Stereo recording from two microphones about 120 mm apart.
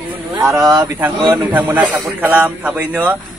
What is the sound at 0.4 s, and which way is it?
Speech, 25° right (ahead or behind).